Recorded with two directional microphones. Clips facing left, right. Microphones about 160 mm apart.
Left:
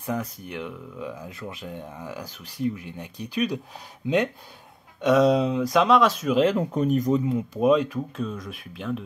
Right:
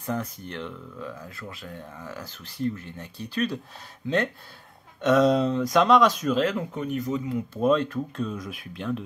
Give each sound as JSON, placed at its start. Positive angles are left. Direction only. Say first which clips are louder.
{"t": 0.0, "sound": "speech", "louder": "left 1 dB", "side_deg": 10}
{"t": 6.5, "sound": "speech", "louder": "left 6 dB", "side_deg": 40}
{"t": 7.2, "sound": "speech", "louder": "left 3 dB", "side_deg": 20}
{"t": 7.6, "sound": "speech", "louder": "left 2 dB", "side_deg": 10}